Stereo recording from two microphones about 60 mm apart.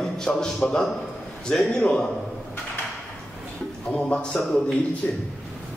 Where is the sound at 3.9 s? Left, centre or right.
Centre.